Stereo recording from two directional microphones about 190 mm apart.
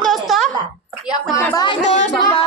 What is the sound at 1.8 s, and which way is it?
Music, 35° left (ahead or behind).